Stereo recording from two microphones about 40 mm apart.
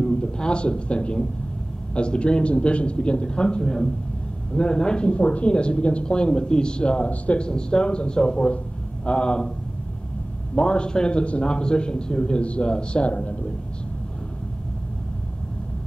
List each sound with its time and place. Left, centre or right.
0.0 s a man's voice: left
10.5 s speech: left